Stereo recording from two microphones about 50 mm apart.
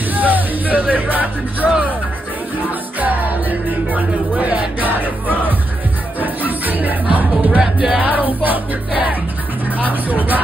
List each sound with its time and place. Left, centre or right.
0.1 s speech: right
3.0 s music: right
7.6 s music: centre
9.8 s vehicle: right